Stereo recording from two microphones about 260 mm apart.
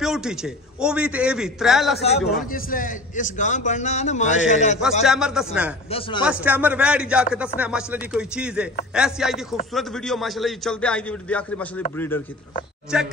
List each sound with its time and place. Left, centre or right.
0.0 s a man's voice: centre
2.5 s a man's voice: left
5.0 s a man's voice: centre
5.9 s a man's voice: left
6.2 s a man's voice: centre
12.9 s a man's voice: centre